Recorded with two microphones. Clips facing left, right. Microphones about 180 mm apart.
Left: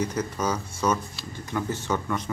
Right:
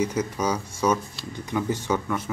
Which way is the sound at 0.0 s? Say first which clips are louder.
Right 2 dB; 10° right (ahead or behind).